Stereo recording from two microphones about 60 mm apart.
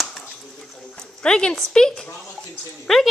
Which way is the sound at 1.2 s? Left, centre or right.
Centre.